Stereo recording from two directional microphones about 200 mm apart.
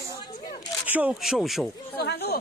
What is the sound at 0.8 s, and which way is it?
Speech, 5° right (ahead or behind).